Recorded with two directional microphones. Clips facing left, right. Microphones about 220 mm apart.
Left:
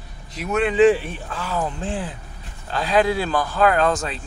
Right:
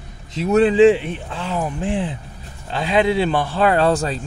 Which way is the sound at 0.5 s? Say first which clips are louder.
Right 4 dB; 30° right (ahead or behind).